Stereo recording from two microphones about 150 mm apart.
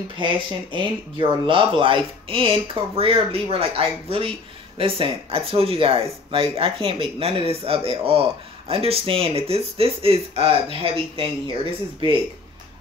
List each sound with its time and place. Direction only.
0.2 s speech: 35° right (ahead or behind)